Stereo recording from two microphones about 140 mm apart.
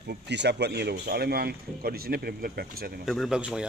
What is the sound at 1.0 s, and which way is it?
Speech, 90° right.